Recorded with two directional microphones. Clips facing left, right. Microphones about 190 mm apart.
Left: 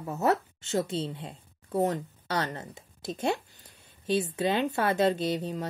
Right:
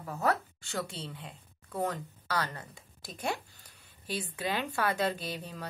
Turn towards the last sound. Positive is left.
turn(degrees=20)  # may be behind; listen again after turning